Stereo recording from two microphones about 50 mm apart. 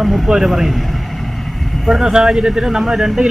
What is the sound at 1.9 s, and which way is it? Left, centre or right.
Speech, centre.